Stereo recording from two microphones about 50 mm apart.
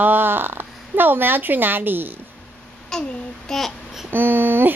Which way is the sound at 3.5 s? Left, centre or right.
Centre.